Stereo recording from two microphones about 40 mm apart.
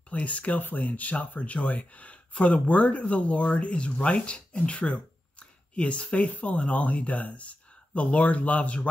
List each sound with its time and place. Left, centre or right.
0.1 s speech: left